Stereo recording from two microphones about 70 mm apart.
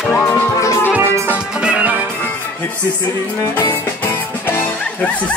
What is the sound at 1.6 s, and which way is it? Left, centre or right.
Music, centre.